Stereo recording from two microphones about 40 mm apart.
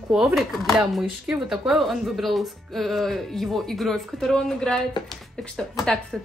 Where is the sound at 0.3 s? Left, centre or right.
Centre.